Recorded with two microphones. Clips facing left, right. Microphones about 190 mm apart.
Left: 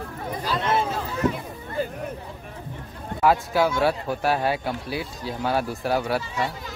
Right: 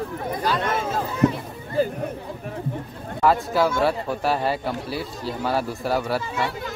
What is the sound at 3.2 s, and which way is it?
Speech, centre (ahead or behind).